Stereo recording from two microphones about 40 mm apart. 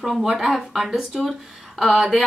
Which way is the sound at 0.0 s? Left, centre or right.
Centre.